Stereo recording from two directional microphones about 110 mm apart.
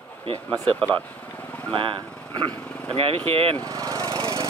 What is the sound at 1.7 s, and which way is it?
Speech, 50° right (ahead or behind).